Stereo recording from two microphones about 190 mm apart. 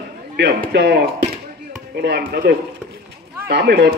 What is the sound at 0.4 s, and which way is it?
Speech, 60° right (ahead or behind).